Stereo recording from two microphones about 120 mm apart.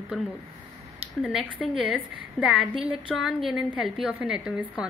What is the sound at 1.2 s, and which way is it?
A woman's voice, 10° right (ahead or behind).